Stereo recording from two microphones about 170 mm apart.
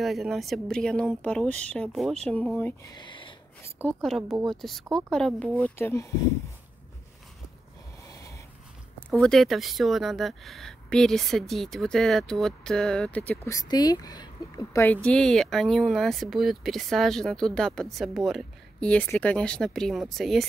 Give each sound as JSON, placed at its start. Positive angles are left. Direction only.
{"t": 0.0, "sound": "a woman's voice", "side_deg": 0}
{"t": 2.9, "sound": "speech", "side_deg": 25}
{"t": 3.8, "sound": "a woman's voice", "side_deg": 0}
{"t": 8.1, "sound": "dog", "side_deg": 20}
{"t": 9.1, "sound": "a woman's voice", "side_deg": 0}